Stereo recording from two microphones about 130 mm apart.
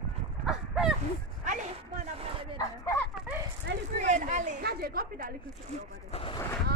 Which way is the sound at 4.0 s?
70° right (ahead or behind).